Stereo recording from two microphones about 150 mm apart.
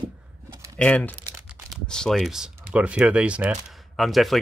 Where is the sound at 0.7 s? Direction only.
10° left (ahead or behind).